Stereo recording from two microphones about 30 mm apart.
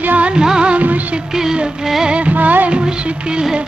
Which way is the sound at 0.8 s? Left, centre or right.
Right.